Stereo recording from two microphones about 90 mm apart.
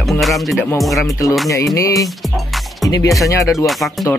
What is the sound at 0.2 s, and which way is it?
Speech, centre (ahead or behind).